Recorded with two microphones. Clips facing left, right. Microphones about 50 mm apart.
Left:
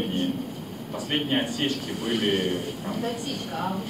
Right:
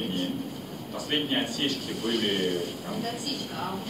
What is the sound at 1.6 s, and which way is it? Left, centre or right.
Speech, centre.